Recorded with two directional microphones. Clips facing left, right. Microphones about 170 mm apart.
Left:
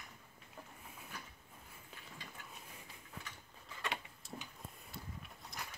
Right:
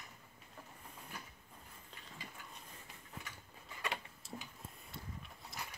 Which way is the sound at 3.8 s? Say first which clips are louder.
Even; centre (ahead or behind).